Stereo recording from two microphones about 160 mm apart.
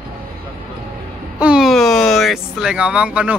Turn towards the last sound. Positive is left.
turn(degrees=-10)  # may be behind; listen again after turning